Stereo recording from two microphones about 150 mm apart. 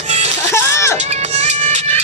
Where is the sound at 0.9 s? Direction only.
50° right (ahead or behind).